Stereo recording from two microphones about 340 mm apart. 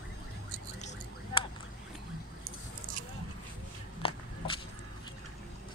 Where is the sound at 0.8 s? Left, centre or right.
Centre.